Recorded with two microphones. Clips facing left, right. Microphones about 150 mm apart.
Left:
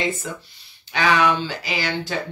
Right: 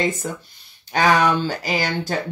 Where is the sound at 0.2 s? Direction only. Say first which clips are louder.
Right 3 dB; 40° right (ahead or behind).